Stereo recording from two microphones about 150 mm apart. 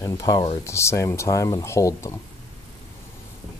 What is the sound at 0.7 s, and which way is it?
Speech, 20° left (ahead or behind).